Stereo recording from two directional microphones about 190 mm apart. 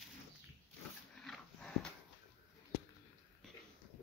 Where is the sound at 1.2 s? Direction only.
5° left (ahead or behind).